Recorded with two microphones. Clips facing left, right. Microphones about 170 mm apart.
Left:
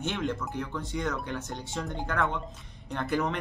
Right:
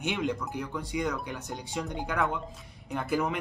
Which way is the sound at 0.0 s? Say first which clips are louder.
Right 1 dB; 15° right (ahead or behind).